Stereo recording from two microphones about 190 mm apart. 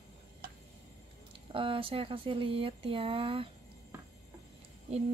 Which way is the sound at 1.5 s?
30° right (ahead or behind).